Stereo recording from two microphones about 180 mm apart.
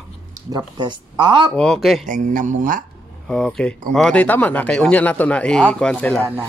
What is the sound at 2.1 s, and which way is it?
Speech, 45° right (ahead or behind).